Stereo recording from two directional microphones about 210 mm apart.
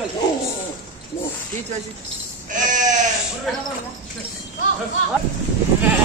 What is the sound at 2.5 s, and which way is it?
Sheep, 35° right (ahead or behind).